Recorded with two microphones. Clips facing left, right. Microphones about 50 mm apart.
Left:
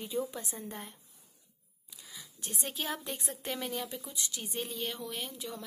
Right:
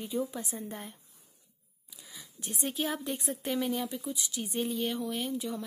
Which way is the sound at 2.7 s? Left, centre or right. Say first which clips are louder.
Right 4 dB; right.